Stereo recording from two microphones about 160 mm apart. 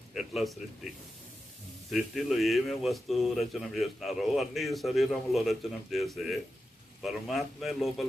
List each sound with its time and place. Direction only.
0.1 s a man's voice: centre (ahead or behind)
1.9 s speech: centre (ahead or behind)